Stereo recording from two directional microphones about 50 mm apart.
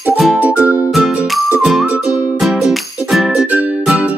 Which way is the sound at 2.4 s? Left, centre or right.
Centre.